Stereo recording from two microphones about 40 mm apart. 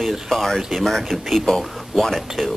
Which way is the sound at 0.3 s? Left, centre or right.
Centre.